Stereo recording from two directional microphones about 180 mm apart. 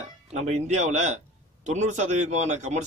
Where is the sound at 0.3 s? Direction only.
40° right (ahead or behind).